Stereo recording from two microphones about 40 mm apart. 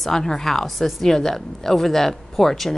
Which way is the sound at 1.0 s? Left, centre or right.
Centre.